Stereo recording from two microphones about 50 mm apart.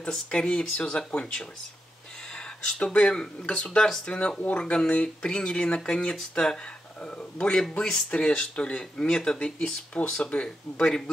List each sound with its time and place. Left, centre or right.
0.1 s speech: centre